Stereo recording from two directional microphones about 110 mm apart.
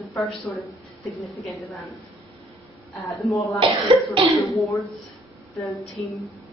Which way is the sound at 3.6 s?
50° right (ahead or behind).